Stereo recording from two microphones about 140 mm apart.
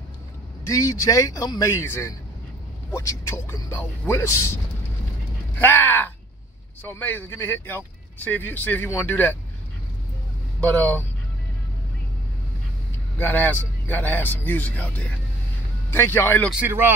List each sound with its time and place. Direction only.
0.7 s speech: 25° left (ahead or behind)
5.6 s a man's voice: 15° left (ahead or behind)
10.7 s a man's voice: 10° left (ahead or behind)
13.2 s a man's voice: 15° left (ahead or behind)
16.6 s speech: 15° right (ahead or behind)